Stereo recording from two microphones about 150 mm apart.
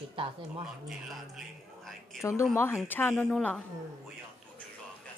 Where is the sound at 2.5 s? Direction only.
15° left (ahead or behind).